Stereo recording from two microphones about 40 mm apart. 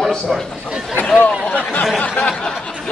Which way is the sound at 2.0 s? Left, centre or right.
Left.